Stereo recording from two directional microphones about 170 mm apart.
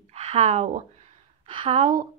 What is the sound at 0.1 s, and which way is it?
Speech, 40° right (ahead or behind).